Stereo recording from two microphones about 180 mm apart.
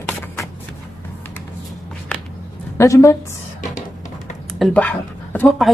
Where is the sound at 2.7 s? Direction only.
15° left (ahead or behind).